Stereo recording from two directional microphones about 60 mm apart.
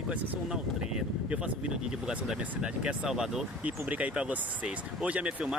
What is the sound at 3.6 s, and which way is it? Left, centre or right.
Speech, right.